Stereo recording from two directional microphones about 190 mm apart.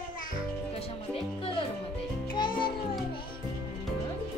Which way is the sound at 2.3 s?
25° left (ahead or behind).